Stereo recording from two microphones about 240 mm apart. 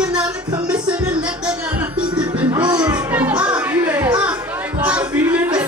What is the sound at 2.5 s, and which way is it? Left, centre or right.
Music, centre.